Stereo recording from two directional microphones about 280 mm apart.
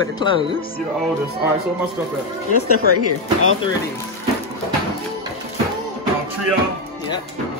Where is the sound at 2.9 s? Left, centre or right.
Left.